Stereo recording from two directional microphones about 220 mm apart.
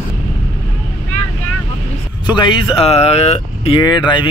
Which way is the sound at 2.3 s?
20° left (ahead or behind).